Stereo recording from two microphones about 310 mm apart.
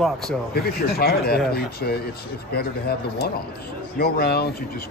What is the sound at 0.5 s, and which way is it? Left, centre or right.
Speech, left.